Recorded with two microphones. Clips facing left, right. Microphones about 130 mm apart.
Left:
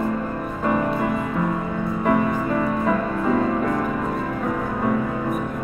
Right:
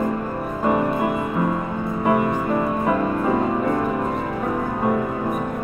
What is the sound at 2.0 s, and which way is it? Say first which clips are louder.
Music: right 1 dB; 15° right (ahead or behind).